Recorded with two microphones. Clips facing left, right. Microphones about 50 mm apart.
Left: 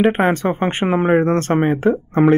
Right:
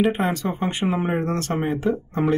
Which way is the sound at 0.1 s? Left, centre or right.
Left.